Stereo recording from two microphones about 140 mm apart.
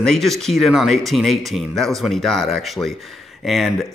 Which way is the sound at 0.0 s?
Centre (ahead or behind).